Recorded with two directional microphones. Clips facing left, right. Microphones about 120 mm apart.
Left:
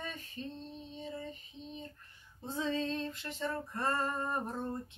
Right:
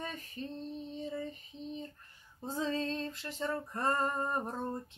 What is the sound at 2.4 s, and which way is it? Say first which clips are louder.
Female singing: even; 40° right (ahead or behind).